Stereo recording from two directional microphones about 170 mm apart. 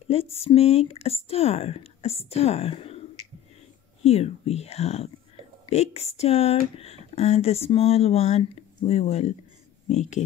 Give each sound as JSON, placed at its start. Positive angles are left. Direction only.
{"t": 0.1, "sound": "speech", "side_deg": 35}
{"t": 4.0, "sound": "speech", "side_deg": 35}